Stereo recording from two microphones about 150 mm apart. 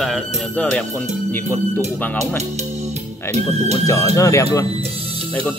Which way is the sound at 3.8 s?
20° left (ahead or behind).